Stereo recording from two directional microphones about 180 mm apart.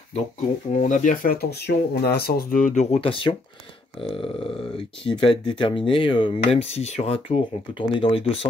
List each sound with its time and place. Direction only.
0.7 s speech: 45° left (ahead or behind)